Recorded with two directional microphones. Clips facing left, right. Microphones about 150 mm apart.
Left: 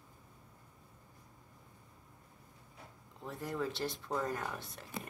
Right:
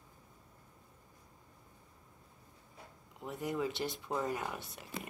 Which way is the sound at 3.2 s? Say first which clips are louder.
Right 3 dB; 20° right (ahead or behind).